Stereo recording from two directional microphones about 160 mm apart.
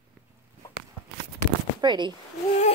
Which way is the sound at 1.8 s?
30° right (ahead or behind).